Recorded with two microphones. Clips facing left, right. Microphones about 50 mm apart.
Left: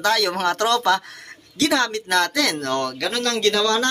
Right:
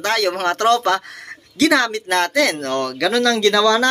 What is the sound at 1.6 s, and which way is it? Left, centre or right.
Speech, right.